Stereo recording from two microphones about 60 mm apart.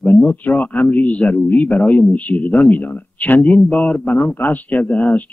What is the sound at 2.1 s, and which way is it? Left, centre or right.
Speech, left.